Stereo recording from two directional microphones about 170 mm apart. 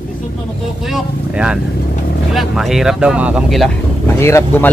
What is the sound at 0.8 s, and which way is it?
Speech, 5° right (ahead or behind).